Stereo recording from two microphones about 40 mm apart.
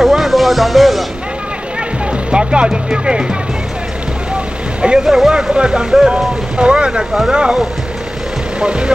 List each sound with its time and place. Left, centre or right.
0.0 s music: centre
2.3 s speech: right
5.0 s speech: centre
5.6 s speech: right
8.5 s speech: right